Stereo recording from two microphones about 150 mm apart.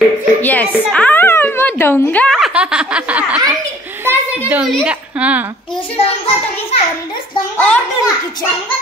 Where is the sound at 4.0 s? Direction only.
15° right (ahead or behind).